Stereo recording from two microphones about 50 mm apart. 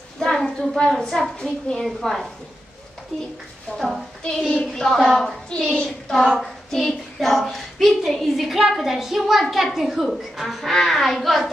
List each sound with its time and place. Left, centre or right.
0.2 s a woman's voice: centre
3.7 s a woman's voice: centre
5.7 s child singing: centre
6.2 s child singing: centre
7.4 s a woman's voice: centre